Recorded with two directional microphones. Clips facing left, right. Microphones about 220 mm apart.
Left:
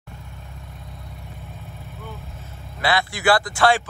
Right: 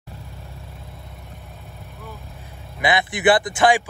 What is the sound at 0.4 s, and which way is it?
Vehicle, centre (ahead or behind).